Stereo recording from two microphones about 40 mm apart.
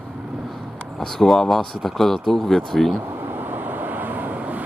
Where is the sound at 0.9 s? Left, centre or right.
Centre.